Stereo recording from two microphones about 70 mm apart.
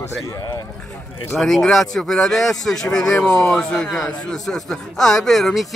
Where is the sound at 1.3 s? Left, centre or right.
Centre.